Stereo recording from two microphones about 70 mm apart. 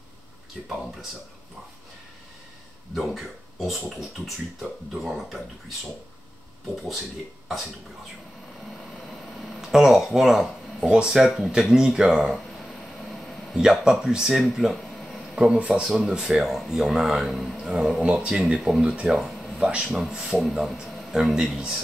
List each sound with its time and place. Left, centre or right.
0.6 s speech: centre
2.9 s speech: centre
9.4 s speech: centre
12.6 s a sound: centre
13.6 s speech: centre
15.4 s speech: centre
19.0 s a sound: centre
19.7 s speech: centre